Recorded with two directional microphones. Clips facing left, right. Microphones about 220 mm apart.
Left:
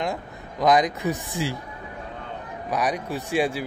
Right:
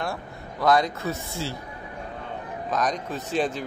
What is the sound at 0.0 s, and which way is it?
Speech, 20° left (ahead or behind).